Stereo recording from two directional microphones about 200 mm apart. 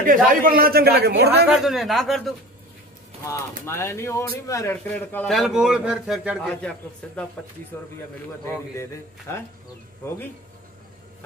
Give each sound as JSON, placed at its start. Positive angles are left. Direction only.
{"t": 0.0, "sound": "a man's voice", "side_deg": -45}
{"t": 1.5, "sound": "speech", "side_deg": 0}
{"t": 3.3, "sound": "speech", "side_deg": 15}